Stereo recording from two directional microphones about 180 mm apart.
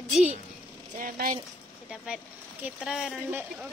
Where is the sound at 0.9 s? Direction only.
45° right (ahead or behind).